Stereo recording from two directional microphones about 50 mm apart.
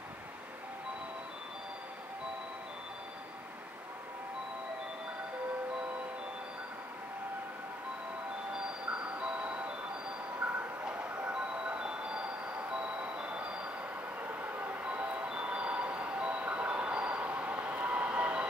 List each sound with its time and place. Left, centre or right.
9.2 s music: right
10.5 s train: right
11.3 s music: right
12.7 s vehicle: right
14.4 s train: right
14.8 s vehicle: right